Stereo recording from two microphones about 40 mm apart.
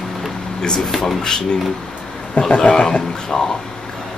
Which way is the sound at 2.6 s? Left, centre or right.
Centre.